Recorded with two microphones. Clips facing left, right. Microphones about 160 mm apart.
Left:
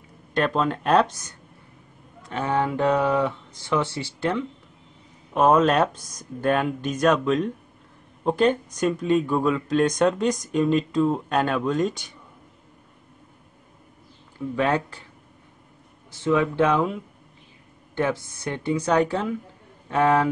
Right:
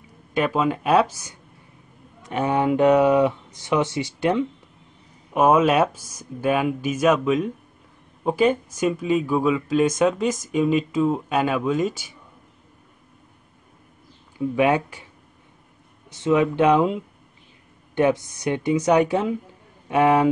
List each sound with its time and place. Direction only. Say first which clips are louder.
0.3 s speech: right 1 dB; 5° right (ahead or behind)
14.5 s speech: right 3 dB; 15° right (ahead or behind)
16.1 s speech: right 2 dB; 20° right (ahead or behind)